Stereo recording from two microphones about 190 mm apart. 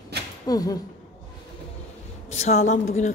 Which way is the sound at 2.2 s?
35° left (ahead or behind).